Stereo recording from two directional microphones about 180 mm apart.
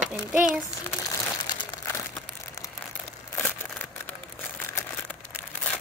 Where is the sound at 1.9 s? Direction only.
15° left (ahead or behind).